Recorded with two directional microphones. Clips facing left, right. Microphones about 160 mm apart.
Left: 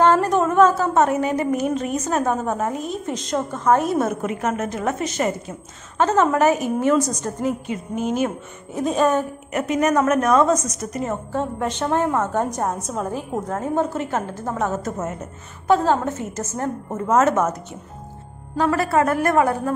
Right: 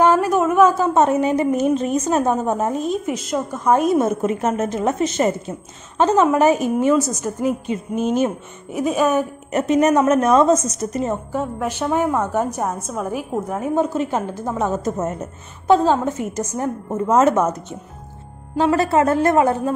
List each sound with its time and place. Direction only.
0.0 s a woman's voice: 10° right (ahead or behind)
3.1 s a woman's voice: 5° right (ahead or behind)
7.6 s a woman's voice: 25° right (ahead or behind)
8.7 s a woman's voice: 5° right (ahead or behind)
9.5 s a woman's voice: 30° right (ahead or behind)
11.3 s a woman's voice: 10° right (ahead or behind)
18.6 s a woman's voice: 25° right (ahead or behind)